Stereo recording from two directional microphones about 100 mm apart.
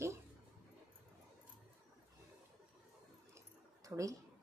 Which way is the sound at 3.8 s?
35° right (ahead or behind).